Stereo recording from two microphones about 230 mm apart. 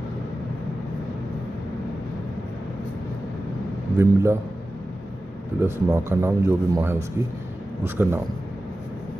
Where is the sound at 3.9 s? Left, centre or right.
Centre.